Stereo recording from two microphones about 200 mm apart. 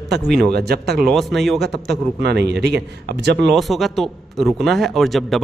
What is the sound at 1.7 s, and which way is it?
Speech, 55° right (ahead or behind).